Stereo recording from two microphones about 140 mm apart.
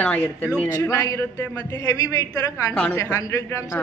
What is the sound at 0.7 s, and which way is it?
A man's voice, 20° left (ahead or behind).